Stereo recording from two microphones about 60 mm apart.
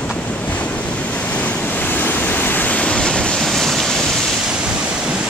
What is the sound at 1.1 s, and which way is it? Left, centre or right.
Waves, left.